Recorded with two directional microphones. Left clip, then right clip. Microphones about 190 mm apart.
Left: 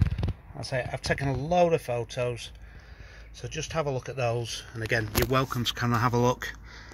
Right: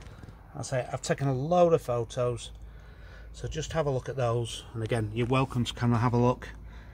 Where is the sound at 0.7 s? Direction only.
5° right (ahead or behind).